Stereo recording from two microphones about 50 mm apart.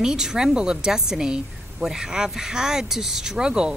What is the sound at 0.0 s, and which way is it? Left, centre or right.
A woman's voice, centre.